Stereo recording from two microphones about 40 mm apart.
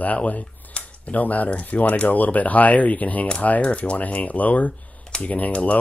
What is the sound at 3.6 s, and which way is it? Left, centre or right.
Speech, left.